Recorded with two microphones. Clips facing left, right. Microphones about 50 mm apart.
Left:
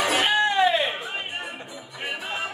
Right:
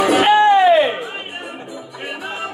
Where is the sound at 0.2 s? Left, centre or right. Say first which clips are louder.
Right 10 dB; right.